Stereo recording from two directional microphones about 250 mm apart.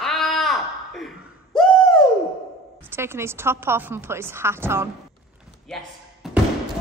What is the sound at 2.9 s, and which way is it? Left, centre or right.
A woman's voice, centre.